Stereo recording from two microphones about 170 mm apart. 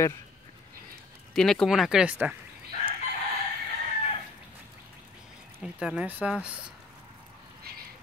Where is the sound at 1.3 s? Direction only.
5° left (ahead or behind).